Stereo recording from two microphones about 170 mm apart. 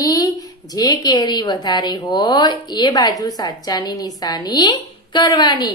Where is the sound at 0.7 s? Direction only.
25° left (ahead or behind).